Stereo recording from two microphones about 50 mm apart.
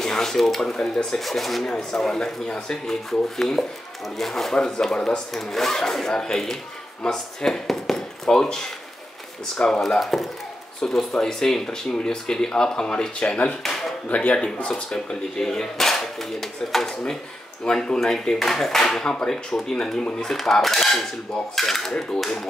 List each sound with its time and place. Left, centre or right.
0.0 s speech: centre
1.2 s speech: centre
13.6 s a sound: centre
14.0 s speech: left
14.7 s speech: centre
20.2 s speech: centre